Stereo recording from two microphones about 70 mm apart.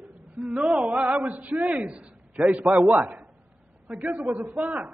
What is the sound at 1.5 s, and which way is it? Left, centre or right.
A man's voice, centre.